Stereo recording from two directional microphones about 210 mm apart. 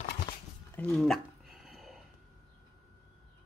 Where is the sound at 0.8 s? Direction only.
5° left (ahead or behind).